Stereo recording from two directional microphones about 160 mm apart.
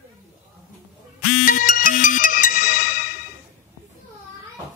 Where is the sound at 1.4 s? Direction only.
60° left (ahead or behind).